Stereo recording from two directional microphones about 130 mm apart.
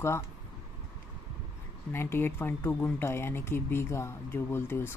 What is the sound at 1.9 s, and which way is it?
Speech, 20° left (ahead or behind).